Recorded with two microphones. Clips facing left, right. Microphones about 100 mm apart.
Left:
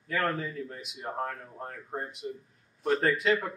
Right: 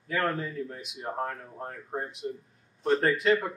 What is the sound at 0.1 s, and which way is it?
A man's voice, centre (ahead or behind).